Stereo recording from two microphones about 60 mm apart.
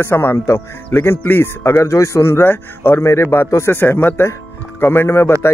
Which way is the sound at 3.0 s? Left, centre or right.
Left.